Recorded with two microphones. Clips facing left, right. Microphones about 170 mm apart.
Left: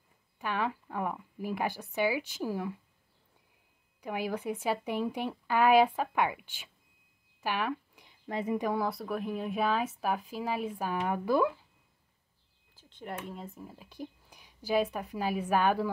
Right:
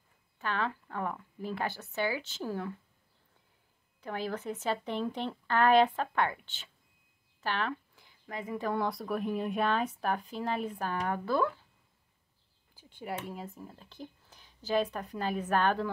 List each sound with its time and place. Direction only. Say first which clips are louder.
0.4 s speech: left 1 dB; 15° left (ahead or behind)
4.0 s speech: left 2 dB; 10° left (ahead or behind)
7.4 s a sound: left 1 dB; 10° left (ahead or behind)
8.3 s speech: left 6 dB; 25° left (ahead or behind)
8.7 s speech: even; centre (ahead or behind)
12.7 s speech: right 2 dB; 10° right (ahead or behind)
13.7 s a woman's voice: left 4 dB; 10° left (ahead or behind)